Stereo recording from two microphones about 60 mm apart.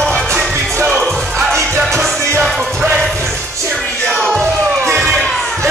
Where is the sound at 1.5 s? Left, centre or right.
Right.